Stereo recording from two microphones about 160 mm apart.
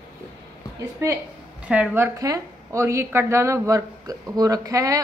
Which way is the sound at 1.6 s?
10° right (ahead or behind).